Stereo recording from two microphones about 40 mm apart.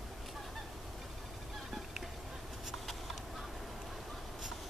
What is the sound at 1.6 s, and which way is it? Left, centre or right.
Fowl, centre.